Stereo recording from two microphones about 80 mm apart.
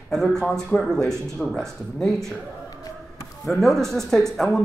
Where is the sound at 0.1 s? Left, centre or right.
Centre.